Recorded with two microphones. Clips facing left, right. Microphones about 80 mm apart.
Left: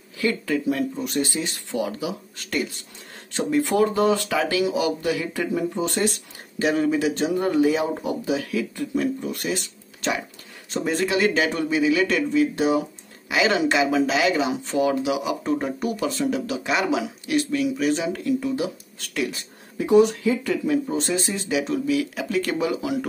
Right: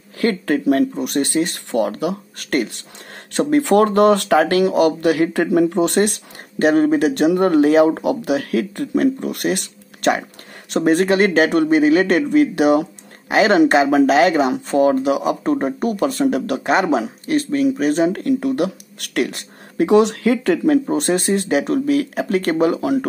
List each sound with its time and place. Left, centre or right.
0.2 s speech: right
13.3 s speech: right